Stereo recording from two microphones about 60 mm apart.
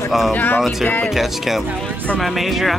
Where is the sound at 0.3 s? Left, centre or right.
Left.